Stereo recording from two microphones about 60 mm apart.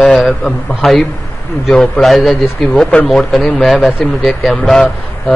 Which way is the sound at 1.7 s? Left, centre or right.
Centre.